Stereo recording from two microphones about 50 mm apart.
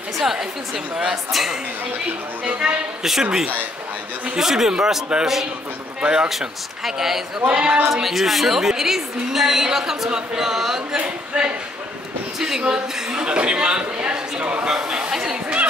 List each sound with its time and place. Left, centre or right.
0.2 s a woman's voice: centre
2.6 s a woman's voice: centre
5.9 s a man's voice: right
6.2 s a woman's voice: centre
7.4 s a woman's voice: right
7.9 s a woman's voice: centre
11.0 s a sound: centre
12.4 s a man's voice: centre